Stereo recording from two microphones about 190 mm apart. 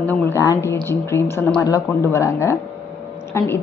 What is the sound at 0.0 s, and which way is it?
A woman's voice, 10° left (ahead or behind).